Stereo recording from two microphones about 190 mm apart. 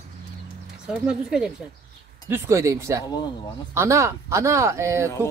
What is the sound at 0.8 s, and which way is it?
Speech, 5° right (ahead or behind).